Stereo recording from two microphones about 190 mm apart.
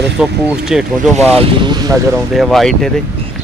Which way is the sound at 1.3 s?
25° right (ahead or behind).